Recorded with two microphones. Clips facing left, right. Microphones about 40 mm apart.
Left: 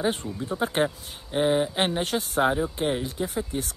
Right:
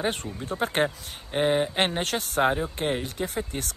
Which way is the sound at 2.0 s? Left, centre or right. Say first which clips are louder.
Left 1 dB; right.